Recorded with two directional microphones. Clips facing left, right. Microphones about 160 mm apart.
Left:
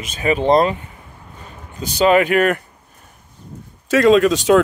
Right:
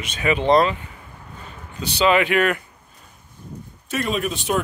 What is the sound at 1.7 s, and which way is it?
Speech, 45° left (ahead or behind).